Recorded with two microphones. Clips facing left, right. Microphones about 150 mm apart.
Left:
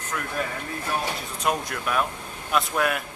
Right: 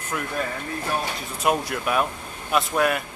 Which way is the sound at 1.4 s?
5° right (ahead or behind).